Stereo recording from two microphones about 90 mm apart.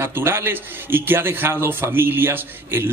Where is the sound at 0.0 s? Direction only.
25° right (ahead or behind).